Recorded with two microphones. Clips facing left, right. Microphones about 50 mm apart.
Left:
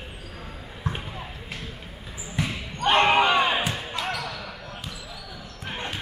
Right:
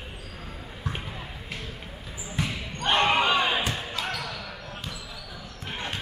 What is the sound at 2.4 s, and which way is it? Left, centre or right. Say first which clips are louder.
Basketball bounce: left 2 dB; centre.